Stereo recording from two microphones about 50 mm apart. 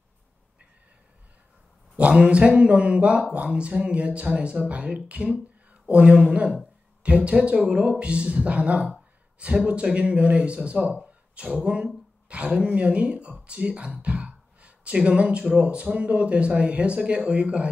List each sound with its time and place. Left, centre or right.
2.0 s speech: right
13.4 s a sound: right
15.6 s speech: right